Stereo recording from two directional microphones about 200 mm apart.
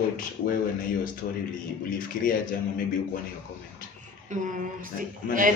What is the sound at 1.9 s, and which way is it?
Speech, 45° left (ahead or behind).